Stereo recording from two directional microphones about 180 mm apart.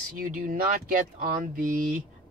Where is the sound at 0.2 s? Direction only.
50° right (ahead or behind).